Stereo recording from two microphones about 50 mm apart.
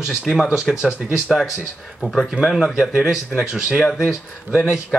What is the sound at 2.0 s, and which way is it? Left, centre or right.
Speech, centre.